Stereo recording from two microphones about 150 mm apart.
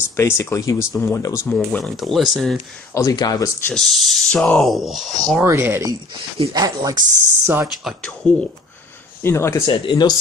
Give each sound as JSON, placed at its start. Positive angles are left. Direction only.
{"t": 0.1, "sound": "speech", "side_deg": 15}
{"t": 1.5, "sound": "speech", "side_deg": 5}
{"t": 2.9, "sound": "speech", "side_deg": 20}
{"t": 3.6, "sound": "speech", "side_deg": 5}
{"t": 5.4, "sound": "speech", "side_deg": -15}
{"t": 7.6, "sound": "speech", "side_deg": 0}
{"t": 9.2, "sound": "speech", "side_deg": 15}
{"t": 9.7, "sound": "speech", "side_deg": 30}